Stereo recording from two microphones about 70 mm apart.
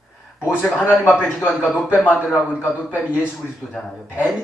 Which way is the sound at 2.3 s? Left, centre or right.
Centre.